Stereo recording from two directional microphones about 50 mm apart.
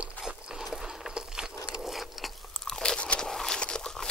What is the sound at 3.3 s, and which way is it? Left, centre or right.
Walk, centre.